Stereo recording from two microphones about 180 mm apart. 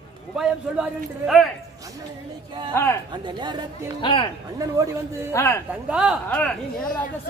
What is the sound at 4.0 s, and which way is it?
Speech, 30° left (ahead or behind).